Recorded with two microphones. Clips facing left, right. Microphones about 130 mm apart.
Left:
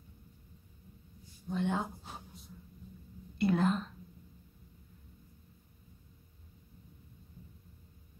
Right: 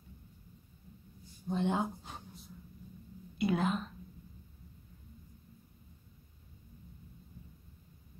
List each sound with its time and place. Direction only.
1.5 s speech: 20° right (ahead or behind)
2.0 s a sound: centre (ahead or behind)
3.3 s whispering: centre (ahead or behind)